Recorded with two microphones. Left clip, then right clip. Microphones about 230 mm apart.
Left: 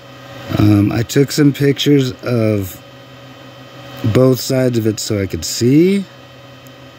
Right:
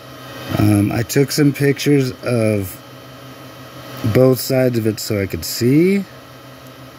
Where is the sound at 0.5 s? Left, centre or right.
Centre.